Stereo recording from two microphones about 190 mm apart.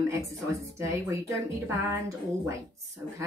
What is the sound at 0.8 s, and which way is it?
Speech, 15° right (ahead or behind).